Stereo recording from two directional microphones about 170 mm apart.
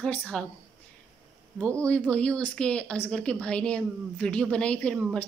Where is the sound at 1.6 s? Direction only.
15° right (ahead or behind).